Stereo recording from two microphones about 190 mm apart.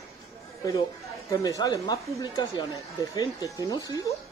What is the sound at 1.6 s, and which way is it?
A woman's voice, 20° left (ahead or behind).